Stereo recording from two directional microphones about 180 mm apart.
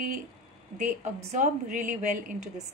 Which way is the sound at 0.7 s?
40° right (ahead or behind).